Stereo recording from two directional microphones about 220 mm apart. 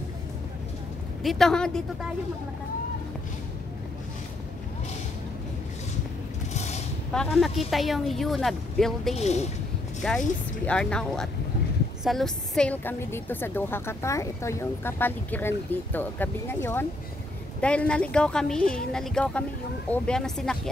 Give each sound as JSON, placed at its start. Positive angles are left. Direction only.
{"t": 1.2, "sound": "speech", "side_deg": 0}
{"t": 6.5, "sound": "a sound", "side_deg": 30}
{"t": 7.1, "sound": "speech", "side_deg": 0}
{"t": 9.1, "sound": "a woman's voice", "side_deg": 30}
{"t": 10.0, "sound": "a woman's voice", "side_deg": 5}
{"t": 17.6, "sound": "speech", "side_deg": 5}